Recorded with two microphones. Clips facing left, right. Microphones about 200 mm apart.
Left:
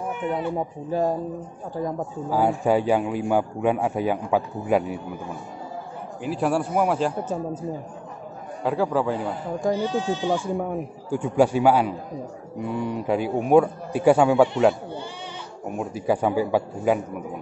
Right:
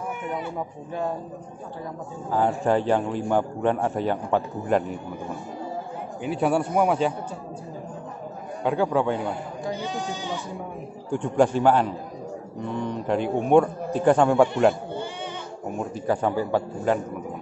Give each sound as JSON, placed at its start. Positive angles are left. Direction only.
{"t": 0.6, "sound": "speech", "side_deg": 35}
{"t": 2.3, "sound": "a man's voice", "side_deg": 10}
{"t": 6.2, "sound": "a man's voice", "side_deg": 0}
{"t": 8.6, "sound": "a man's voice", "side_deg": 0}
{"t": 9.6, "sound": "speech", "side_deg": 45}
{"t": 11.1, "sound": "a man's voice", "side_deg": 5}
{"t": 15.8, "sound": "a man's voice", "side_deg": 10}